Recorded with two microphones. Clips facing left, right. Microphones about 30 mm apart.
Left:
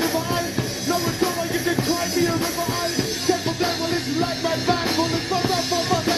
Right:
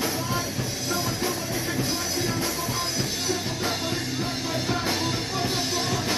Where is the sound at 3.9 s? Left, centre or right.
Left.